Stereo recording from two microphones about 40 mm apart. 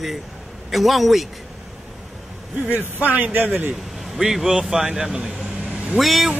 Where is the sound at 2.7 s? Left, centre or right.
Right.